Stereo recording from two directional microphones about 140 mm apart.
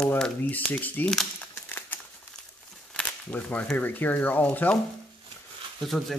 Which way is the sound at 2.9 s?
10° left (ahead or behind).